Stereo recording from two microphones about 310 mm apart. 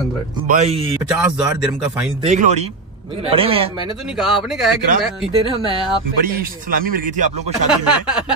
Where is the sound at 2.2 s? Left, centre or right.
Right.